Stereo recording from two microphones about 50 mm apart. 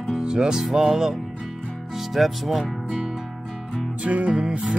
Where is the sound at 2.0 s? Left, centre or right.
Centre.